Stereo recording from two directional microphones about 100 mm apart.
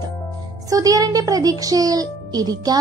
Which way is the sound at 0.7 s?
35° right (ahead or behind).